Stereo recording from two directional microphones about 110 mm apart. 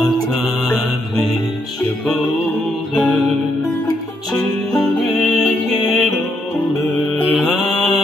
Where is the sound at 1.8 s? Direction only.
15° left (ahead or behind).